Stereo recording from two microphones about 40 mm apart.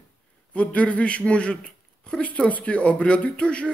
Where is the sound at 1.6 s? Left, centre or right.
Centre.